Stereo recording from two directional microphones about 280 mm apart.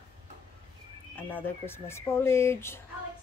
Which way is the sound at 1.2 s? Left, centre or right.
Centre.